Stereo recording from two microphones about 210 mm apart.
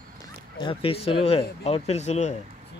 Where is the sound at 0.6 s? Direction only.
25° left (ahead or behind).